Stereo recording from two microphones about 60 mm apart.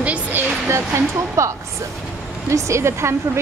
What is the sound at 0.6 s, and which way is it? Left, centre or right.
Speech, right.